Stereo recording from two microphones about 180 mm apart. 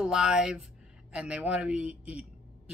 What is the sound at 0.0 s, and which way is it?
A woman's voice, 5° right (ahead or behind).